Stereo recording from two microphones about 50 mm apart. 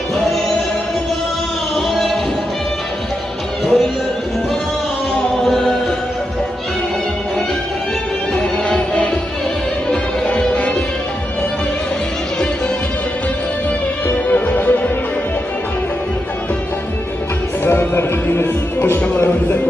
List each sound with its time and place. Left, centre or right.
1.8 s music: centre
3.6 s music: centre
5.4 s chant: centre
8.6 s music: left
14.0 s music: left
17.6 s music: left